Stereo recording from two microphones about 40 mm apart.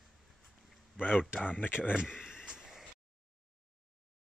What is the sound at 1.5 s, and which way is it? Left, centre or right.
Speech, left.